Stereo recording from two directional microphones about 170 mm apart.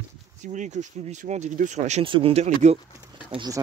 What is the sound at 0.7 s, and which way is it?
Speech, 45° right (ahead or behind).